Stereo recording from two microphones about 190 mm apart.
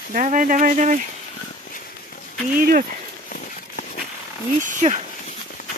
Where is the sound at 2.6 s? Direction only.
45° right (ahead or behind).